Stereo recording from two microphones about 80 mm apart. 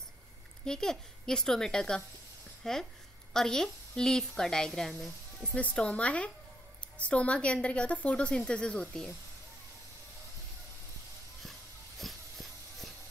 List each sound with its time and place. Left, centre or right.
0.7 s a woman's voice: centre
5.4 s a woman's voice: centre
12.0 s a sound: centre